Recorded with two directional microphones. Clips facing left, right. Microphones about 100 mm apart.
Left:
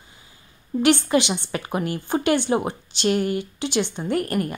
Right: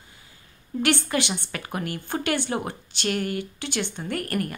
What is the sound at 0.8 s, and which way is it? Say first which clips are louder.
A woman's voice: left 6 dB; 20° left (ahead or behind).